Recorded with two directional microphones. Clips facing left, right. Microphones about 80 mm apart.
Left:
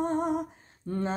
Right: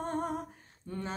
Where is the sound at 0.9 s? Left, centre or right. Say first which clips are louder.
Left 7 dB; left.